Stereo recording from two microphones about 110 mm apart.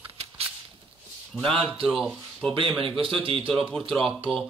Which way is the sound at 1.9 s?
5° right (ahead or behind).